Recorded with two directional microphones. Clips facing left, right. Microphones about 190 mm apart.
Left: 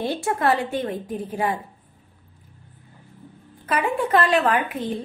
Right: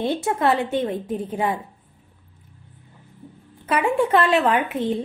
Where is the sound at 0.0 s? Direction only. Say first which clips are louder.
Right 2 dB; 20° right (ahead or behind).